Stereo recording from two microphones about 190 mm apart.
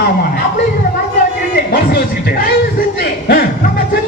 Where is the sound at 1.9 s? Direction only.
50° left (ahead or behind).